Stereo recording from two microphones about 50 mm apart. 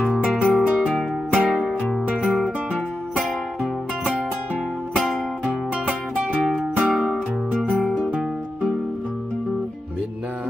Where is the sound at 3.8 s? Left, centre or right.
Centre.